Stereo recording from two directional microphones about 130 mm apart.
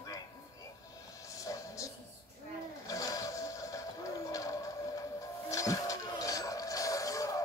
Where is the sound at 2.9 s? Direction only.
25° left (ahead or behind).